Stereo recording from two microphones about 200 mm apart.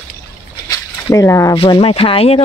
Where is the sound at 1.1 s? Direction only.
15° left (ahead or behind).